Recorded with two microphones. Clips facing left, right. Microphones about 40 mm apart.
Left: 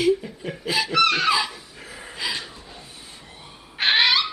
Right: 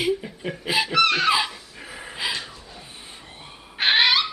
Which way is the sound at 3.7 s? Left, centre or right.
Centre.